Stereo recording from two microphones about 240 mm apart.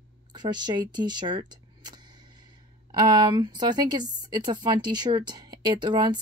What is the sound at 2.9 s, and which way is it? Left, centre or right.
Speech, centre.